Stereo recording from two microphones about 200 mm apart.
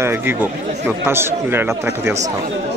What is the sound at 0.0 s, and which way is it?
Speech, 10° right (ahead or behind).